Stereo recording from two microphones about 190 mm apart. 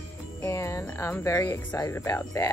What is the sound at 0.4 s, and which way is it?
Speech, 15° left (ahead or behind).